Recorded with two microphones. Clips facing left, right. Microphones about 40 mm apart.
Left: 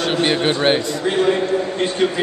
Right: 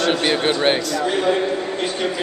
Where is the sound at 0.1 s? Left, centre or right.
Centre.